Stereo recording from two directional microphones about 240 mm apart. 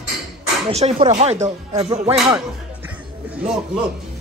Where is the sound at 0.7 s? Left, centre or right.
Right.